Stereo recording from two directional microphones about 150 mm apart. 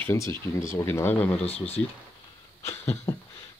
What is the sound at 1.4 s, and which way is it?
Speech, 45° left (ahead or behind).